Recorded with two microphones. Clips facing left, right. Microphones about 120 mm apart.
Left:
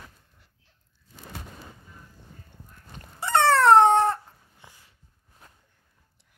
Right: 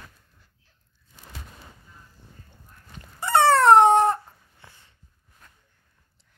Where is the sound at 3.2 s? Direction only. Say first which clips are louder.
Right 2 dB; 10° right (ahead or behind).